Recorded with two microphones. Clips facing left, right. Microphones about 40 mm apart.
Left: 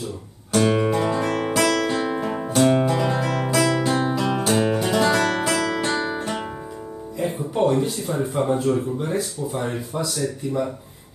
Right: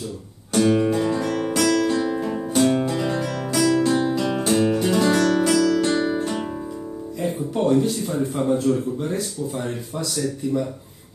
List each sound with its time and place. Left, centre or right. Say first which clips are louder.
0.5 s music: right 1 dB; left
2.5 s music: left 2 dB; centre
4.1 s music: even; centre
7.2 s speech: left 2 dB; centre